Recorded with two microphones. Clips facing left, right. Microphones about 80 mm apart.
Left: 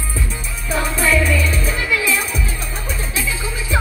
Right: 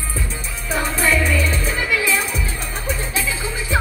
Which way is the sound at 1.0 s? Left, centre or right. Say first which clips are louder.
Left 1 dB; right.